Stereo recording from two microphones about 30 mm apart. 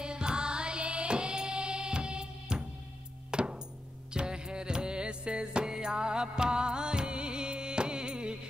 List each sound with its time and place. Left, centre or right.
0.0 s music: right